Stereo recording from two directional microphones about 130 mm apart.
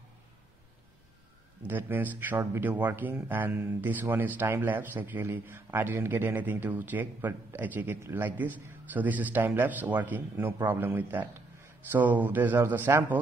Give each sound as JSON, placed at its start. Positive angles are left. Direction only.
{"t": 1.7, "sound": "speech", "side_deg": -15}